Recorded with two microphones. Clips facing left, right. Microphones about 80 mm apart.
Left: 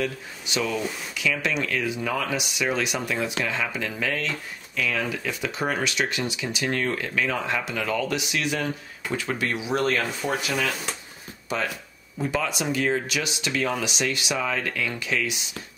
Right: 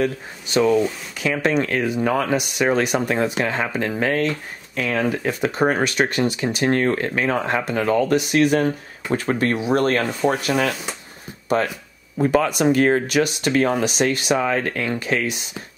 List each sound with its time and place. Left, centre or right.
0.0 s speech: right